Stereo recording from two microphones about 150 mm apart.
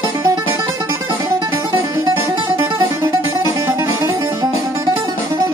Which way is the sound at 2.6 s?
15° right (ahead or behind).